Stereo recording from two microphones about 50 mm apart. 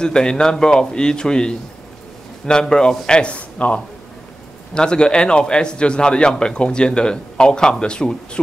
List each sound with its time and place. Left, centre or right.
0.0 s a man's voice: centre
4.7 s a man's voice: centre